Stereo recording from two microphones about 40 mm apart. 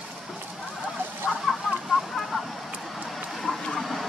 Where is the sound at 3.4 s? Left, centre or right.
Centre.